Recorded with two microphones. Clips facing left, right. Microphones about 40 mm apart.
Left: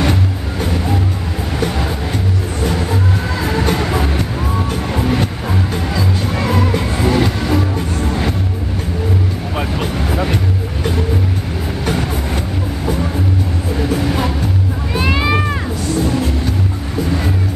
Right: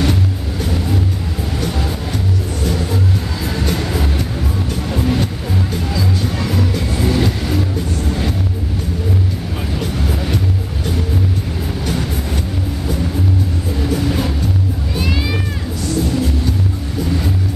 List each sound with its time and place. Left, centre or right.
0.0 s music: left
2.6 s vehicle: left
3.4 s music: left
9.6 s vehicle: left
13.7 s vehicle: left
15.0 s a sound: left